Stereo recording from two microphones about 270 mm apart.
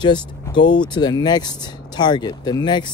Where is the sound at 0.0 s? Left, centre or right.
Centre.